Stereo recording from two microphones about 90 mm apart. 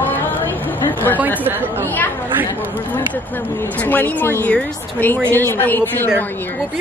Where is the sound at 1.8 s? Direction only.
20° left (ahead or behind).